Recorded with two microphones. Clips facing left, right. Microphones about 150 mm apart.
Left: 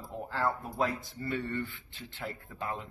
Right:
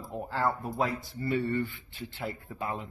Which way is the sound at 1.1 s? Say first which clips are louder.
Right 5 dB; 10° right (ahead or behind).